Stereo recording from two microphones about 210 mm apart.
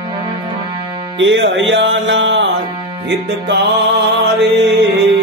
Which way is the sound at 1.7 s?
60° right (ahead or behind).